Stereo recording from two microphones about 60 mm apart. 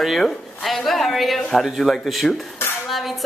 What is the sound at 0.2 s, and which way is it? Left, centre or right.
Speech, centre.